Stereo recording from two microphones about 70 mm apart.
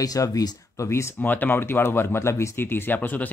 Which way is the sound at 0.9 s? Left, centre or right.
Left.